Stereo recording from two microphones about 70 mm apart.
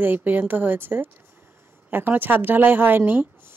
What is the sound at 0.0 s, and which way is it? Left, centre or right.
Speech, right.